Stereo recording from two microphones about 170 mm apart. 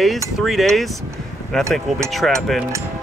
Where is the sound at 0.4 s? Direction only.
Centre (ahead or behind).